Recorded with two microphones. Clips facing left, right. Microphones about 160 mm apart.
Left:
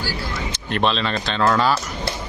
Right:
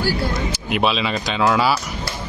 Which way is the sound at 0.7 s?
5° right (ahead or behind).